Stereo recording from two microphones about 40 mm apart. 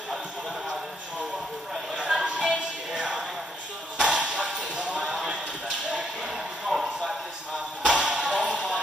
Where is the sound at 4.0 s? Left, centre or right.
Right.